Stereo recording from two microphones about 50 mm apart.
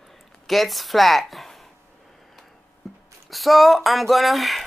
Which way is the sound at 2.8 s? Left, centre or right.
Centre.